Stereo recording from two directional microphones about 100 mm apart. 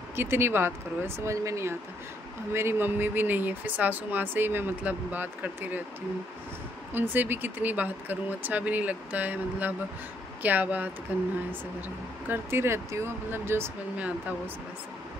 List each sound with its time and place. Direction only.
0.1 s speech: 25° right (ahead or behind)
6.9 s speech: 20° right (ahead or behind)
12.3 s speech: 25° right (ahead or behind)